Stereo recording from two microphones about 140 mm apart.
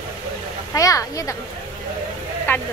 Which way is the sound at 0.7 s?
25° left (ahead or behind).